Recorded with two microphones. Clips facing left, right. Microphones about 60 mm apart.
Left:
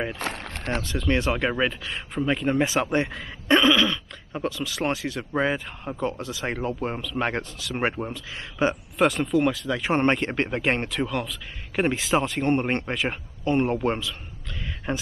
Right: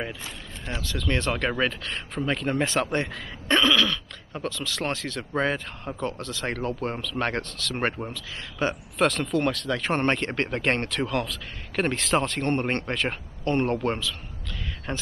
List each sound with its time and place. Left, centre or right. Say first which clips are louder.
0.2 s rowboat: left 7 dB; left
0.8 s speech: left 2 dB; left